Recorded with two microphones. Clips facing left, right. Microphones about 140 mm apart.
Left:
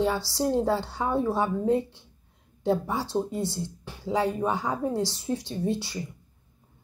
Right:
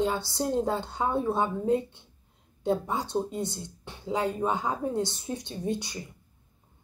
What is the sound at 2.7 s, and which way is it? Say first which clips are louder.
A woman's voice: left 1 dB; 20° right (ahead or behind).